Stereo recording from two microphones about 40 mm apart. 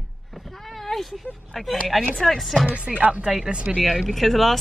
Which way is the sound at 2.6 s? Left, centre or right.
Right.